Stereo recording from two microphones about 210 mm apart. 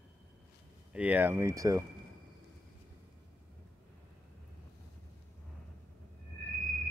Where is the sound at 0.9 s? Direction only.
5° right (ahead or behind).